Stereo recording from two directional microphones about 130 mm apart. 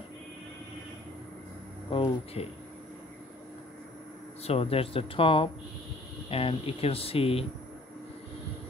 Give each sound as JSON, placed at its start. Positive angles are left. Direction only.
{"t": 1.9, "sound": "speech", "side_deg": 45}
{"t": 4.4, "sound": "speech", "side_deg": 50}